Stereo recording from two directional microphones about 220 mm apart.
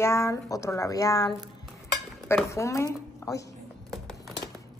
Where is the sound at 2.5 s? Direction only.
15° left (ahead or behind).